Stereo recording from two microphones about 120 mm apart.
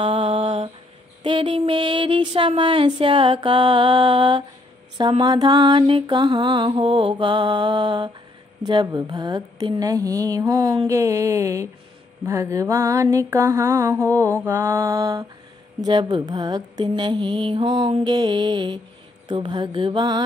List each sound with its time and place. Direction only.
0.0 s a sound: 50° right (ahead or behind)
1.2 s mantra: 45° right (ahead or behind)
8.6 s speech: 35° right (ahead or behind)
10.9 s mantra: 25° right (ahead or behind)
15.8 s speech: 35° right (ahead or behind)